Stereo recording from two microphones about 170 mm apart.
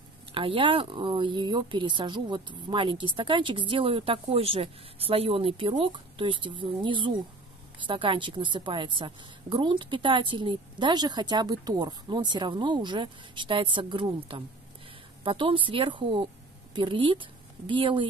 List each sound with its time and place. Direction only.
0.3 s a woman's voice: 30° right (ahead or behind)